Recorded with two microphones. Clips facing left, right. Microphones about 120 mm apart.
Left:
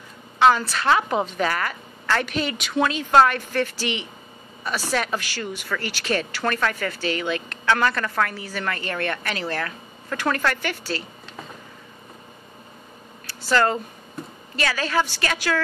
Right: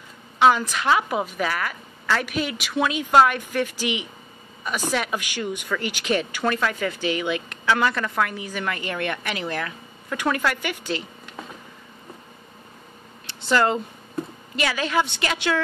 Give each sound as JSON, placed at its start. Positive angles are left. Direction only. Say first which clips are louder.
{"t": 0.4, "sound": "speech", "louder": "even", "side_deg": -10}
{"t": 13.3, "sound": "speech", "louder": "even", "side_deg": -20}